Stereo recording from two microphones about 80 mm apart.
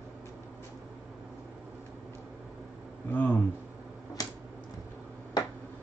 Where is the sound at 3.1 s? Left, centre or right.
Left.